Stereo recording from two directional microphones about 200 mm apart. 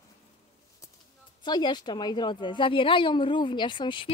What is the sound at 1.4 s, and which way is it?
A woman's voice, 20° left (ahead or behind).